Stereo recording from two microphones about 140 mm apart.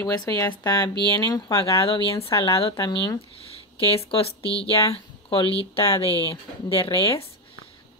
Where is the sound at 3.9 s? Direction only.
45° left (ahead or behind).